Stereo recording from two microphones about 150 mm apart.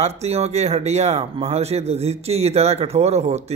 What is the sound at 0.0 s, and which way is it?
A man's voice, 45° right (ahead or behind).